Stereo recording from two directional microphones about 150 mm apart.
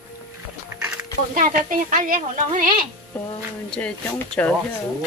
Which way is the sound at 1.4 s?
65° right (ahead or behind).